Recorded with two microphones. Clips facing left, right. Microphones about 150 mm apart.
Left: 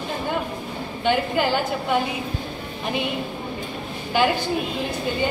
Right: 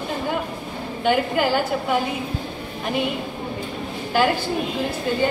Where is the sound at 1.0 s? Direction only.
5° right (ahead or behind).